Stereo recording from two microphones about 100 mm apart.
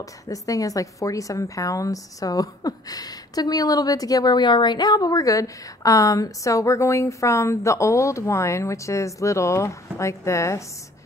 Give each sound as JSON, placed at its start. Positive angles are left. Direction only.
{"t": 0.0, "sound": "a woman's voice", "side_deg": 35}